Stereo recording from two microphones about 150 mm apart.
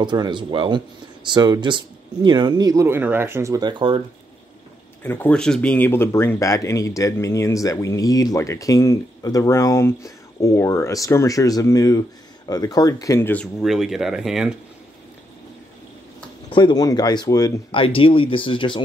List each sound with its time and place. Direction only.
0.0 s speech: 30° right (ahead or behind)
5.0 s speech: 15° left (ahead or behind)
13.6 s speech: centre (ahead or behind)
16.4 s speech: 30° left (ahead or behind)
17.7 s speech: 35° left (ahead or behind)